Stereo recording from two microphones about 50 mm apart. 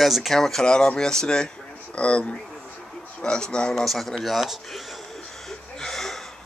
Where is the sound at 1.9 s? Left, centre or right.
Left.